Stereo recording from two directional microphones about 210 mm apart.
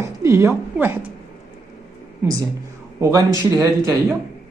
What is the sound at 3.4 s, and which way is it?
Speech, 15° right (ahead or behind).